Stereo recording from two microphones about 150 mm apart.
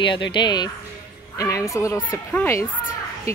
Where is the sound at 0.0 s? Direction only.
30° left (ahead or behind); by 2.6 s 15° left (ahead or behind).